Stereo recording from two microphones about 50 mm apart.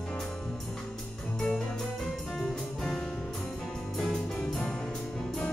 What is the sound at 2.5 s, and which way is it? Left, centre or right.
Music, centre.